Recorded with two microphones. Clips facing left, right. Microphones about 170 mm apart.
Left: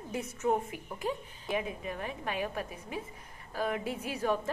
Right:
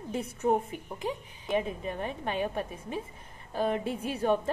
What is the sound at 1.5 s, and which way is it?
A woman's voice, 30° right (ahead or behind).